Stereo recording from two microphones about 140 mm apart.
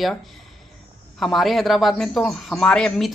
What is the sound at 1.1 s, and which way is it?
Speech, centre (ahead or behind).